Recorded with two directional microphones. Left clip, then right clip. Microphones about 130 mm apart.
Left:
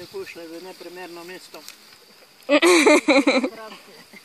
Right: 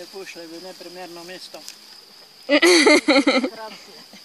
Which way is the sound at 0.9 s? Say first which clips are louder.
Right 1 dB; 20° right (ahead or behind).